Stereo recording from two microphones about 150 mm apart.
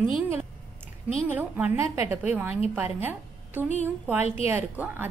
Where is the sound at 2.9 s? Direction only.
15° right (ahead or behind).